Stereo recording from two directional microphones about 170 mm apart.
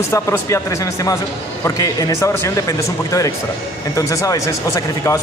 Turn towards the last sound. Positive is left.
turn(degrees=20)  # may be behind; listen again after turning